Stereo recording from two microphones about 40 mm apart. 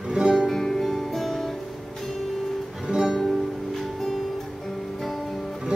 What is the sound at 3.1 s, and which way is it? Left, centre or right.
Music, centre.